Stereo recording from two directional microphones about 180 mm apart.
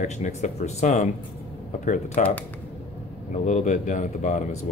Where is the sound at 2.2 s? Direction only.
45° left (ahead or behind).